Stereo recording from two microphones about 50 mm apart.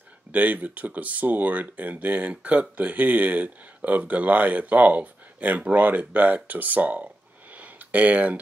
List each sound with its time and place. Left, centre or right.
0.3 s speech: right